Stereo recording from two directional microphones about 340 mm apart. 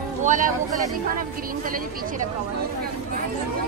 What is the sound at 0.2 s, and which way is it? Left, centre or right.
Speech, right.